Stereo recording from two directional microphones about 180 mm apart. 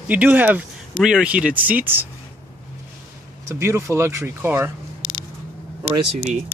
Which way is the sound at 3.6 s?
15° right (ahead or behind).